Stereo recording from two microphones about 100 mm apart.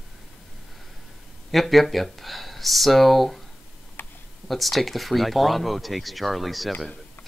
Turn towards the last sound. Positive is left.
turn(degrees=0)  # may be behind; listen again after turning